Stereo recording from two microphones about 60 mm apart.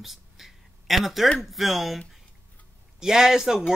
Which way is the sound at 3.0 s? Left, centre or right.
Centre.